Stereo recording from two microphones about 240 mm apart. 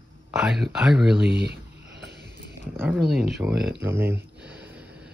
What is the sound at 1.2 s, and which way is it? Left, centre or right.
Speech, right.